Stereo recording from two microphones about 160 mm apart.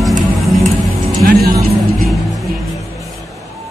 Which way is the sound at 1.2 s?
70° right (ahead or behind).